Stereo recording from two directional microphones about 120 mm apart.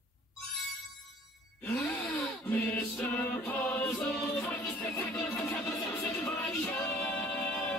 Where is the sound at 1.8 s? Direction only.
5° left (ahead or behind).